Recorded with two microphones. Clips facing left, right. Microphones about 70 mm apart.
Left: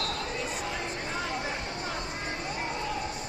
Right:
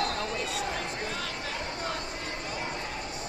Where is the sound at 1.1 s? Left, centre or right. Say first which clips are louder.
Left 3 dB; centre.